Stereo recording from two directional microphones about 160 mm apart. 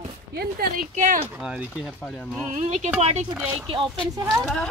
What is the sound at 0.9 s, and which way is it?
Speech, 55° right (ahead or behind).